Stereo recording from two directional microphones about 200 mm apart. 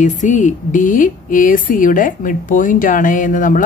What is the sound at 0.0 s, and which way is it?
Speech, 40° left (ahead or behind).